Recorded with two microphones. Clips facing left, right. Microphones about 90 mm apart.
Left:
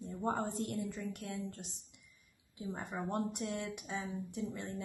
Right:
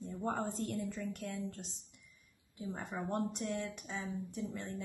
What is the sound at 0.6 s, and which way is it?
A woman's voice, 5° left (ahead or behind).